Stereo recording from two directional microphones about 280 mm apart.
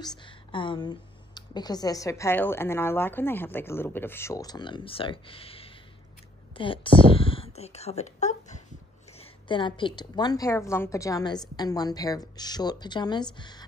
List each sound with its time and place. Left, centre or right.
0.0 s speech: centre